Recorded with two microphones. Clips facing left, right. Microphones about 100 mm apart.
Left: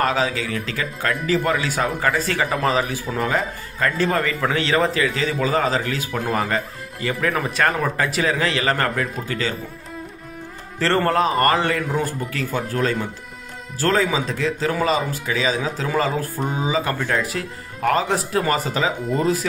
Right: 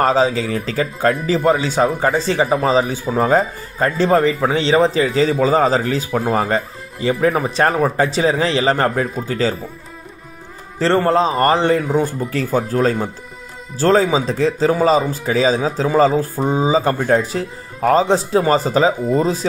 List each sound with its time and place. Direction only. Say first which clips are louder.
0.0 s a man's voice: right 6 dB; 35° right (ahead or behind)
5.0 s a man's voice: right 6 dB; 35° right (ahead or behind)
10.8 s a man's voice: right 4 dB; 15° right (ahead or behind)